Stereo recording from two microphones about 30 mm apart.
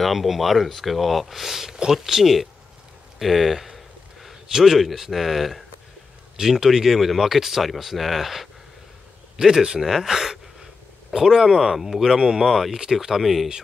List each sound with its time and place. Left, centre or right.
0.0 s speech: centre
6.3 s speech: centre
9.4 s speech: centre
9.8 s speech: centre
10.0 s a sound: centre
11.5 s speech: centre
12.0 s speech: centre
12.4 s speech: centre